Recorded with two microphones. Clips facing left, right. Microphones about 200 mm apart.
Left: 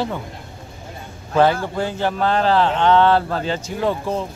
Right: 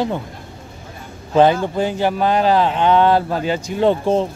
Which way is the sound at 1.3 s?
20° right (ahead or behind).